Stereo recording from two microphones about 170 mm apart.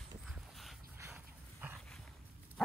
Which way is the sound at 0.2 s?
Centre (ahead or behind).